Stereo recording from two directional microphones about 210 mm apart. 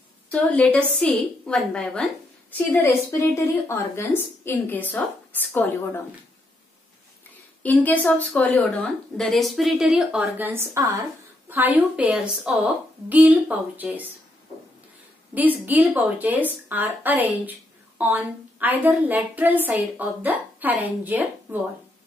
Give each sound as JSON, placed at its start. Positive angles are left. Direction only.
{"t": 0.3, "sound": "a woman's voice", "side_deg": 5}
{"t": 7.6, "sound": "a woman's voice", "side_deg": 5}
{"t": 15.6, "sound": "a woman's voice", "side_deg": -5}